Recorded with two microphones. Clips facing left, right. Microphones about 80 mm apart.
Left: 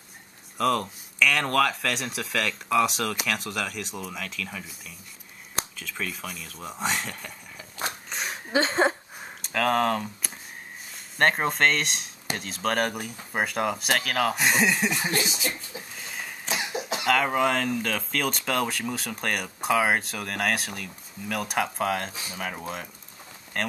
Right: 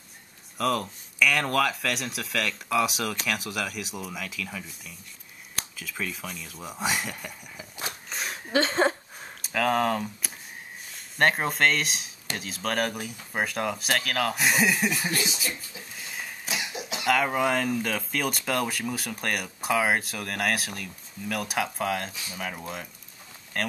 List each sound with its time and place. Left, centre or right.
0.6 s speech: centre
8.1 s a sound: centre
9.4 s speech: centre
16.1 s cough: centre
16.4 s cough: left
17.0 s speech: centre